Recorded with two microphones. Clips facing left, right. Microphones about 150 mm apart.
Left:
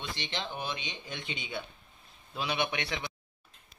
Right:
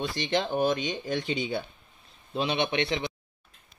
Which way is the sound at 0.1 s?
45° right (ahead or behind).